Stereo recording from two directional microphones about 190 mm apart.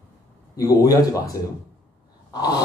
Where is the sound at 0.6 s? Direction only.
20° left (ahead or behind).